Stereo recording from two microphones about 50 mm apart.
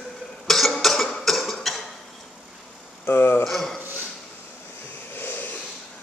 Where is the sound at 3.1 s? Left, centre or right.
Left.